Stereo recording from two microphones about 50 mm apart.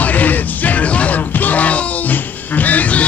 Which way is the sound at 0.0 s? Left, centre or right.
Left.